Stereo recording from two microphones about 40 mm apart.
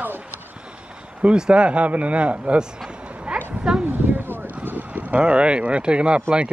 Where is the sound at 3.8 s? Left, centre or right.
Right.